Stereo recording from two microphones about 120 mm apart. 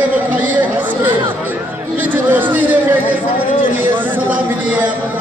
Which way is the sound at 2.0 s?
15° right (ahead or behind).